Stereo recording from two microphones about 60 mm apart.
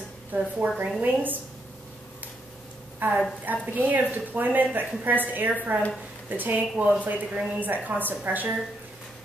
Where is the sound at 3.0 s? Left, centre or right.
Right.